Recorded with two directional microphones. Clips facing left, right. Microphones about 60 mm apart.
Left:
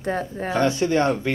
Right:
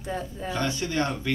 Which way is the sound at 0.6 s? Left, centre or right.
Left.